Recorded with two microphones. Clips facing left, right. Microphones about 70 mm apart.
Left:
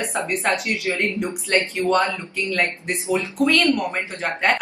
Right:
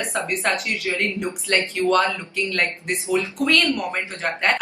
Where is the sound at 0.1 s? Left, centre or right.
Centre.